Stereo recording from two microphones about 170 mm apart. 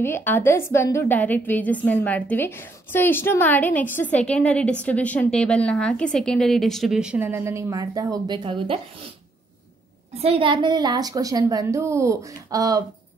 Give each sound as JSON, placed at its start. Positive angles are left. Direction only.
{"t": 0.0, "sound": "a woman's voice", "side_deg": 15}
{"t": 10.1, "sound": "a woman's voice", "side_deg": -35}